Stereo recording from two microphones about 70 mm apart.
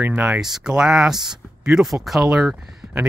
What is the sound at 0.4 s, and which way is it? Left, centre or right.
Speech, centre.